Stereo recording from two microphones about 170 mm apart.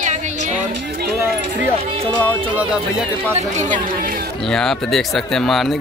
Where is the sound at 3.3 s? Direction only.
45° right (ahead or behind).